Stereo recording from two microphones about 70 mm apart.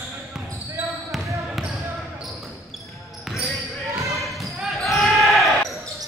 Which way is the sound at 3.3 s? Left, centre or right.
Centre.